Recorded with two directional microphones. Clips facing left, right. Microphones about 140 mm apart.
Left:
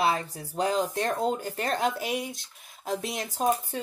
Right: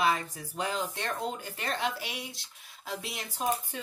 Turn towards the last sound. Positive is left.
turn(degrees=40)  # may be behind; listen again after turning